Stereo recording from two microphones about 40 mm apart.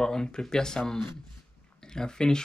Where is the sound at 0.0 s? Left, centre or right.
Centre.